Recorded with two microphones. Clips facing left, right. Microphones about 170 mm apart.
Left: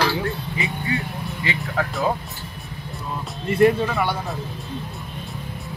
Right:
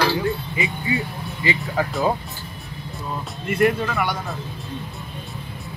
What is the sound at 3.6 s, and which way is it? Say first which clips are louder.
Speech: left 3 dB; 25° left (ahead or behind).